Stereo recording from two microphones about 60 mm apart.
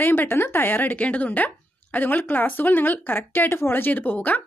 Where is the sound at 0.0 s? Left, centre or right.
Left.